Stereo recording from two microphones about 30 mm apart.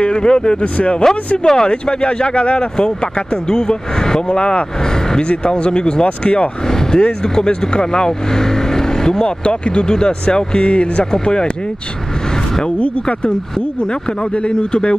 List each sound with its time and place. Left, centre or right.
0.0 s speech: left
1.4 s speech: left
3.4 s speech: left
4.3 s speech: left
7.0 s speech: left
9.4 s speech: left
14.3 s speech: left